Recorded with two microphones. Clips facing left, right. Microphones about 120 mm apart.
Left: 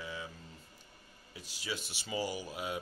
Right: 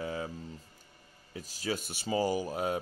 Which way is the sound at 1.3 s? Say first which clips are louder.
Right 7 dB; 40° right (ahead or behind).